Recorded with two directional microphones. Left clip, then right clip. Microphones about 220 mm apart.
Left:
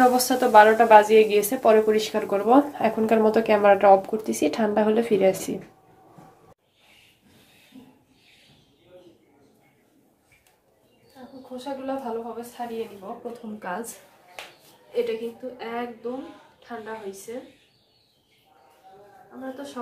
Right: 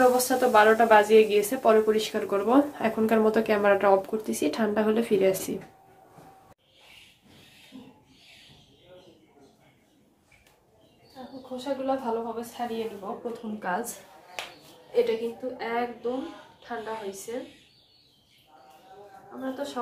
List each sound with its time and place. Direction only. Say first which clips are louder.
0.2 s a woman's voice: left 5 dB; 10° left (ahead or behind)
11.5 s a woman's voice: right 2 dB; 15° left (ahead or behind)
16.6 s a sound: right 1 dB; 5° left (ahead or behind)
19.4 s a woman's voice: right 3 dB; centre (ahead or behind)